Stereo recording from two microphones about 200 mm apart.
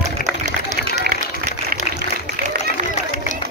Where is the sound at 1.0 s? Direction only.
45° right (ahead or behind).